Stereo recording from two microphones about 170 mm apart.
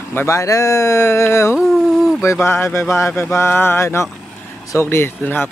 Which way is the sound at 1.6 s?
Centre (ahead or behind).